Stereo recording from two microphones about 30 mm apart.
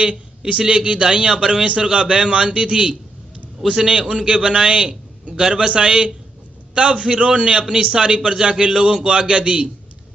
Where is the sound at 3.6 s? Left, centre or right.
Centre.